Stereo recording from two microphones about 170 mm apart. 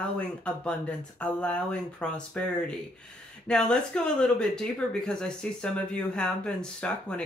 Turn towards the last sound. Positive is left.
turn(degrees=5)  # may be behind; listen again after turning